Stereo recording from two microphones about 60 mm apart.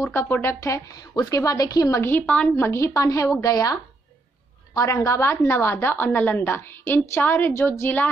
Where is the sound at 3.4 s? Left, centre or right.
Left.